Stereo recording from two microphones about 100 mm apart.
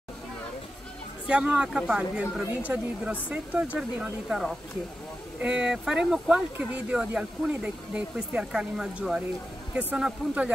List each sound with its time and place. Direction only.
1.2 s speech: 10° right (ahead or behind)